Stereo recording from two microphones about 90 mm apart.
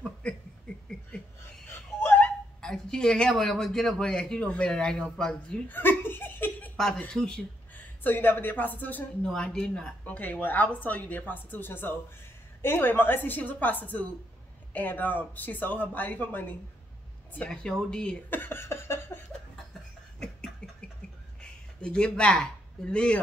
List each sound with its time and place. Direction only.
0.7 s a sound: 10° left (ahead or behind)
1.7 s a sound: 25° left (ahead or behind)
2.6 s a woman's voice: 5° left (ahead or behind)
5.7 s laughter: 25° left (ahead or behind)
7.0 s a woman's voice: 10° left (ahead or behind)
7.7 s speech: 20° left (ahead or behind)
9.2 s a woman's voice: 5° left (ahead or behind)
17.5 s a woman's voice: 5° left (ahead or behind)
18.3 s speech: 25° left (ahead or behind)
20.6 s a sound: 10° left (ahead or behind)
21.4 s speech: 10° left (ahead or behind)